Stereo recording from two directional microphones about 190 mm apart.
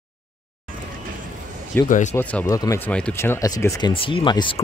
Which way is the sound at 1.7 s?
10° left (ahead or behind).